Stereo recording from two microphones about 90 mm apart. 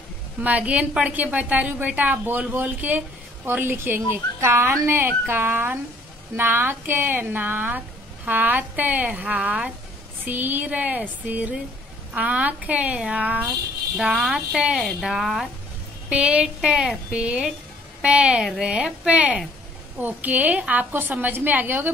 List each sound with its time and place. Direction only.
0.4 s a woman's voice: 15° right (ahead or behind)
13.9 s a woman's voice: 5° right (ahead or behind); by 21.9 s 20° right (ahead or behind)